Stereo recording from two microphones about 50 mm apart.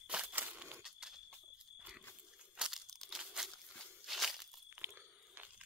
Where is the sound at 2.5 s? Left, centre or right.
Centre.